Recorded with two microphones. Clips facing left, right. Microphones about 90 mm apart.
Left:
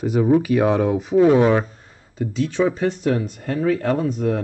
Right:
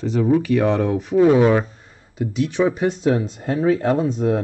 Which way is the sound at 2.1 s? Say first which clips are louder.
Right 1 dB; 10° right (ahead or behind).